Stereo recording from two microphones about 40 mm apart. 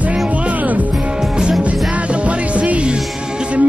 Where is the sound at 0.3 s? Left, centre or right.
Right.